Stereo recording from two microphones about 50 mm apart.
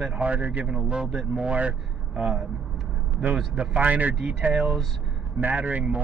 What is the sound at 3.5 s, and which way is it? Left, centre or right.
Speech, right.